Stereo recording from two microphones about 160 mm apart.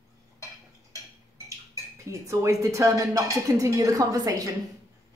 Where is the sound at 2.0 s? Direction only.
20° right (ahead or behind).